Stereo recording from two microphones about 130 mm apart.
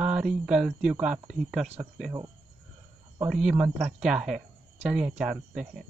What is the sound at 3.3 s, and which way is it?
Speech, 5° right (ahead or behind).